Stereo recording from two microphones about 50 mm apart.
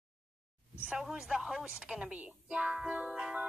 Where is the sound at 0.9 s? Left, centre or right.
Centre.